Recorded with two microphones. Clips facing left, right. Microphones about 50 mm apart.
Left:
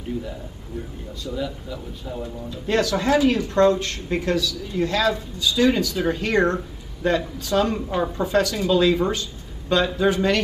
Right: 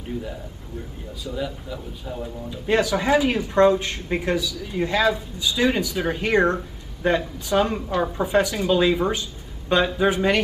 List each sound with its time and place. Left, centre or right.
1.2 s speech: centre
9.9 s speech: centre